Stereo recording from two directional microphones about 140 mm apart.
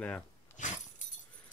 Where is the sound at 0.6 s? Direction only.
65° left (ahead or behind).